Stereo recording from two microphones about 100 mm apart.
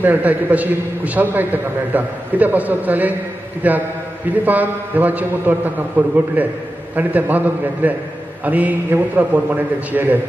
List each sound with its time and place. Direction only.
0.0 s a man's voice: 15° right (ahead or behind)